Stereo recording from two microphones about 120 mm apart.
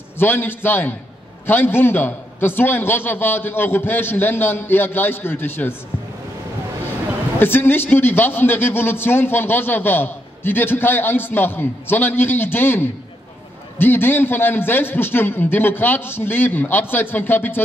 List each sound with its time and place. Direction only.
0.2 s a man's voice: 15° left (ahead or behind)
7.3 s a man's voice: 20° left (ahead or behind)